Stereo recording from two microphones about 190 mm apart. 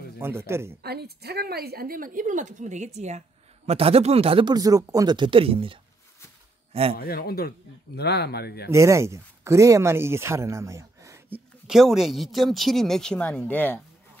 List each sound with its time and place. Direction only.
0.2 s speech: 10° right (ahead or behind)
0.8 s a woman's voice: 55° right (ahead or behind); by 7.0 s 30° right (ahead or behind)
7.0 s speech: 55° left (ahead or behind)
8.6 s speech: 15° right (ahead or behind); by 13.7 s 10° left (ahead or behind)